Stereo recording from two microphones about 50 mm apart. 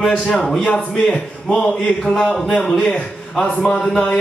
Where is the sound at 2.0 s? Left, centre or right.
Centre.